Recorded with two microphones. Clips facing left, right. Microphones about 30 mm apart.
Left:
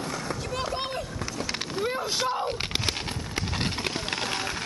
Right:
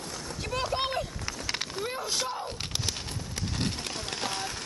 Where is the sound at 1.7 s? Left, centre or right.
Centre; by 4.2 s left.